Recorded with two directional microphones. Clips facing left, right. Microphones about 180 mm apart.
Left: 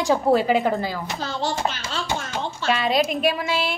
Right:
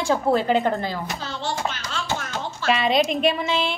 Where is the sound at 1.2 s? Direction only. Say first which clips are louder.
Left 5 dB; 40° left (ahead or behind).